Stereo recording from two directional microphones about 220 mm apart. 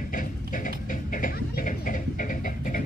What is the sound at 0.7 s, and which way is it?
Music, 40° left (ahead or behind).